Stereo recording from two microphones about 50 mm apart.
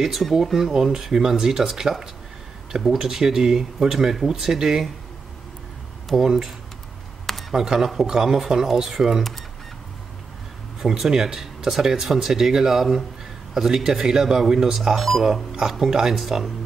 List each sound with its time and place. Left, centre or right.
0.0 s speech: centre
6.1 s speech: centre
7.5 s speech: centre
10.8 s speech: centre
15.9 s speech: centre